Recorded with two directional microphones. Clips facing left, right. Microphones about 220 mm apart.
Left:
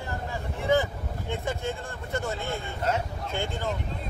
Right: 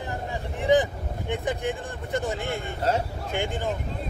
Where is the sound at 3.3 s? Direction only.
15° right (ahead or behind).